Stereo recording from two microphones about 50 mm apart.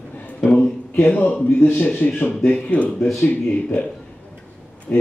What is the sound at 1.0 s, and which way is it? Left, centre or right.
Speech, left.